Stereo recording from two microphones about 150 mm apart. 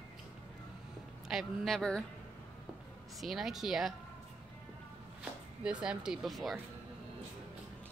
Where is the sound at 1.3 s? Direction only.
Centre (ahead or behind).